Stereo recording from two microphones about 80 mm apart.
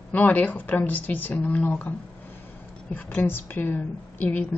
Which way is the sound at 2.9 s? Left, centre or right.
Left.